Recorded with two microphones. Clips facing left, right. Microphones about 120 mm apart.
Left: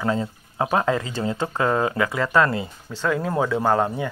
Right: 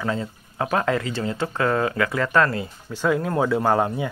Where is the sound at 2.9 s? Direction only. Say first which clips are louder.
Right 2 dB; 10° right (ahead or behind).